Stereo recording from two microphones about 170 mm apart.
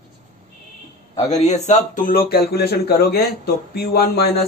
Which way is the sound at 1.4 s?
45° left (ahead or behind).